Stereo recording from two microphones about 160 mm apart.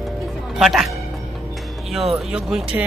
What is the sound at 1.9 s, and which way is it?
Speech, centre (ahead or behind).